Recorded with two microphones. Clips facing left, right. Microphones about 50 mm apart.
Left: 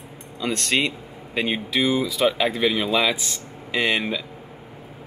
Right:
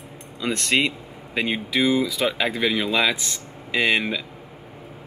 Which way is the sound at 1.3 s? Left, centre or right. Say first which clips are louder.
Even; centre.